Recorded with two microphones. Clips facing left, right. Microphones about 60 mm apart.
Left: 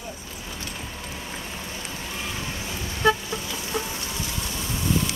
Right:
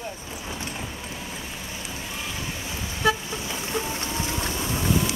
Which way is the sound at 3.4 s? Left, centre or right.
Right.